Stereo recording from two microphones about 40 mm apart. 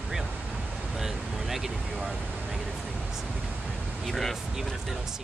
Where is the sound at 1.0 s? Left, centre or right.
Centre.